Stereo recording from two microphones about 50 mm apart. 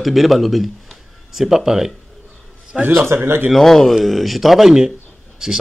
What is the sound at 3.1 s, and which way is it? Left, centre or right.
Speech, right.